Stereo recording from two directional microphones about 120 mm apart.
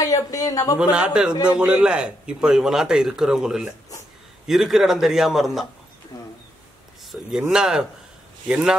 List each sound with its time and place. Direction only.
0.0 s speech: 30° left (ahead or behind)
0.7 s a man's voice: 10° right (ahead or behind)
7.1 s a man's voice: 5° right (ahead or behind)